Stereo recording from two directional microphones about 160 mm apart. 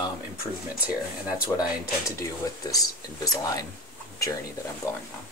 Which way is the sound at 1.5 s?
15° left (ahead or behind).